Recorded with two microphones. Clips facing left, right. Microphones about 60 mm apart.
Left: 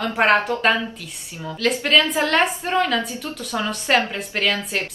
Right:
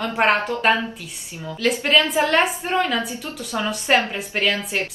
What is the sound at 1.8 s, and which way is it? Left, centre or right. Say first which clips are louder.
A woman's voice: even; centre.